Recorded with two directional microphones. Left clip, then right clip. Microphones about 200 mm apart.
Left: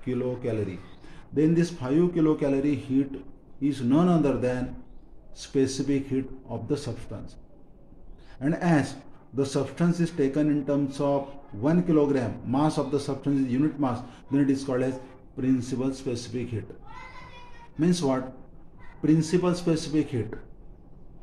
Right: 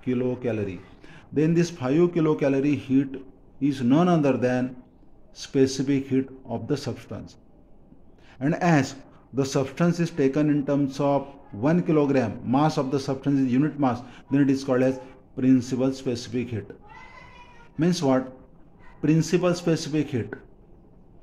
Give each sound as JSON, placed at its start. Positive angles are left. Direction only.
{"t": 0.0, "sound": "a man's voice", "side_deg": -50}
{"t": 8.4, "sound": "a man's voice", "side_deg": -50}
{"t": 17.7, "sound": "a man's voice", "side_deg": -50}